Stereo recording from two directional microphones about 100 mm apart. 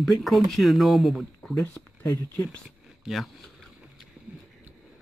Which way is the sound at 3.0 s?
Centre (ahead or behind).